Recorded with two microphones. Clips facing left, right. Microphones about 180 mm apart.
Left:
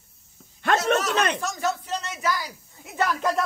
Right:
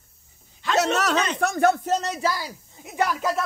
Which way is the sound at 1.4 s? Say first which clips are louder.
Right 7 dB; 55° right (ahead or behind).